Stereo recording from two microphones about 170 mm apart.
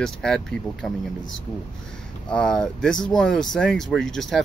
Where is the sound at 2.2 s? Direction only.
5° left (ahead or behind).